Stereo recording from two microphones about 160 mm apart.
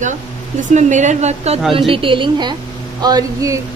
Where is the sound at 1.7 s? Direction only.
35° right (ahead or behind).